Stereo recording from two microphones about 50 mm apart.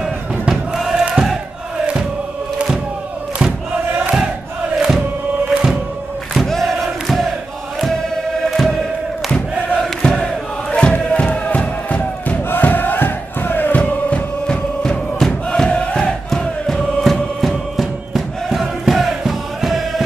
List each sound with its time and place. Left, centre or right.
0.0 s crowd: centre
4.7 s chant: centre
5.5 s music: centre
6.3 s crowd: centre
8.5 s music: centre
10.0 s chant: centre
10.7 s a sound: left
11.4 s music: left
12.4 s crowd: left; by 15.0 s centre
15.1 s crowd: centre
15.7 s crowd: left
16.3 s chant: centre